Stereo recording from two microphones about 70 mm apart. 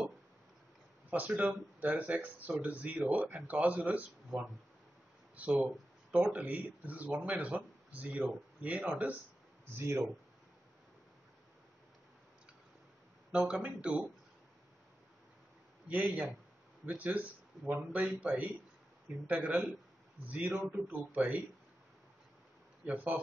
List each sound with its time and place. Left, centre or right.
1.1 s speech: right
5.3 s speech: right
9.8 s speech: right
13.3 s speech: centre
15.9 s speech: right
22.8 s speech: right